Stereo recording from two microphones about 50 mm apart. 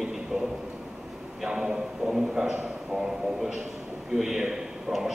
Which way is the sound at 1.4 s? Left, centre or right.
Centre.